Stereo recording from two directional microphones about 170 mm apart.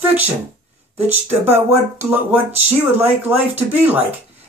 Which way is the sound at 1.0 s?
15° right (ahead or behind).